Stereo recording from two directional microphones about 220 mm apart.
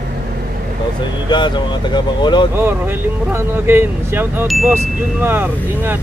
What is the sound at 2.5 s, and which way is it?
Speech, 10° right (ahead or behind).